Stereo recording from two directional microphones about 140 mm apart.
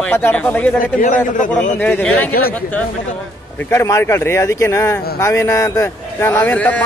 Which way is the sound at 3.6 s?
20° left (ahead or behind).